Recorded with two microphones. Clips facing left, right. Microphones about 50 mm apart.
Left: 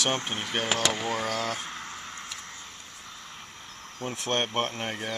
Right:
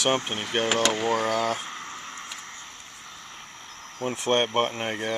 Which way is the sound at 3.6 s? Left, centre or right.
Right.